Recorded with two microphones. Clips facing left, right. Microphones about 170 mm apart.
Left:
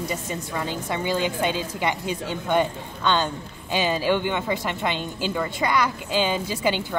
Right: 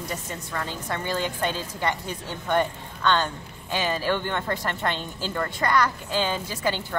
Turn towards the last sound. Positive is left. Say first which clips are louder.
# left 3 dB
turn(degrees=15)  # may be behind; listen again after turning